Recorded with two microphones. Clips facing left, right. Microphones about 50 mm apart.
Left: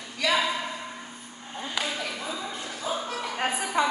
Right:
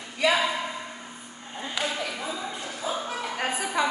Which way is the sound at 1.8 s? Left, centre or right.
Centre.